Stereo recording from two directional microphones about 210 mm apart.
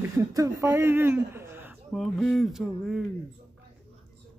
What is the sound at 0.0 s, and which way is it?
Speech, 15° right (ahead or behind).